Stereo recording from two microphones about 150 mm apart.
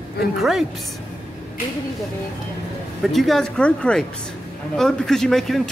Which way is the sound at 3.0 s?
Centre (ahead or behind).